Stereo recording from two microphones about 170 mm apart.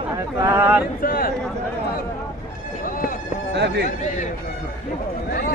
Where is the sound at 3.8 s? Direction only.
45° left (ahead or behind).